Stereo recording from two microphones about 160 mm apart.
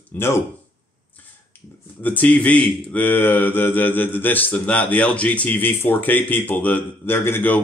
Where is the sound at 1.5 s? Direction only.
10° left (ahead or behind).